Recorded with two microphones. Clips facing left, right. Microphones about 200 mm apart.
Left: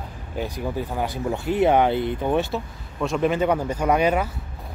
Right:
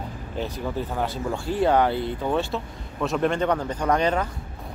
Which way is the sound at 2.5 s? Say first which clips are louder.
Left 1 dB; centre (ahead or behind).